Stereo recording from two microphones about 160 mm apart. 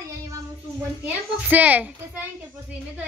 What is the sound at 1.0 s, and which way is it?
A child's voice, 10° right (ahead or behind).